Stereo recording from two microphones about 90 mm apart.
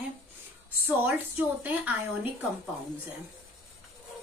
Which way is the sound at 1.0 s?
20° right (ahead or behind).